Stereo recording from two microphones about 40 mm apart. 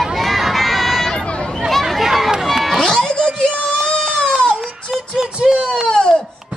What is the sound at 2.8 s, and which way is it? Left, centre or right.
Music, centre.